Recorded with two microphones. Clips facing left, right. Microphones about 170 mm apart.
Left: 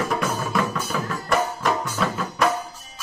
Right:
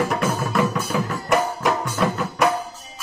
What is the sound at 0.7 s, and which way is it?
Music, 15° right (ahead or behind).